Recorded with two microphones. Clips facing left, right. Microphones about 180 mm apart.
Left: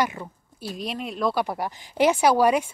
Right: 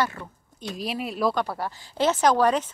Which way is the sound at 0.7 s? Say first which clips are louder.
Right 1 dB; centre (ahead or behind).